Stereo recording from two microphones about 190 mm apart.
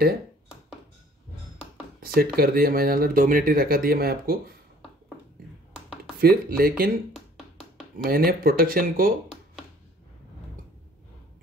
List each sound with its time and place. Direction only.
2.1 s speech: 50° right (ahead or behind)
6.2 s speech: 55° right (ahead or behind)
8.0 s speech: 50° right (ahead or behind)